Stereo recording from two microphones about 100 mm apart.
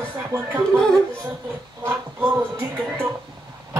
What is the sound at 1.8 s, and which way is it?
Speech, 25° right (ahead or behind).